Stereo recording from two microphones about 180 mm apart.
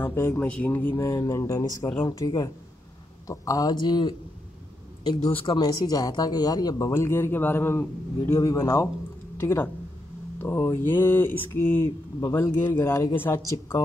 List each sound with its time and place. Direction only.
0.0 s speech: 15° left (ahead or behind)